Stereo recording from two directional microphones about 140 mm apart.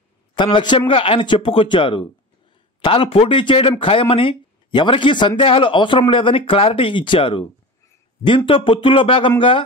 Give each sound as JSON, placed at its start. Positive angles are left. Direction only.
{"t": 0.4, "sound": "speech", "side_deg": 35}
{"t": 8.5, "sound": "speech", "side_deg": 40}